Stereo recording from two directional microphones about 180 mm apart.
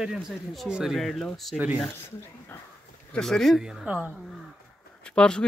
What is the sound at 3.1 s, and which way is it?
Speech, centre (ahead or behind).